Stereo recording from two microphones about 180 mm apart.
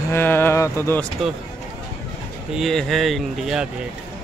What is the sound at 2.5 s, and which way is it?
Speech, centre (ahead or behind).